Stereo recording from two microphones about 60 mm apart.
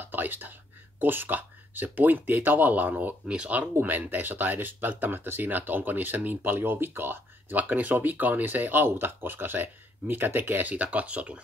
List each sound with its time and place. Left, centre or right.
0.0 s whispering: right
0.9 s speech: right
3.3 s speech: centre
3.8 s speech: right
10.7 s speech: right